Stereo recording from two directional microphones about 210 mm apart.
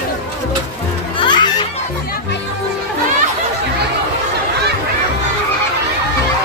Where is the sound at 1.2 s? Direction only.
20° left (ahead or behind).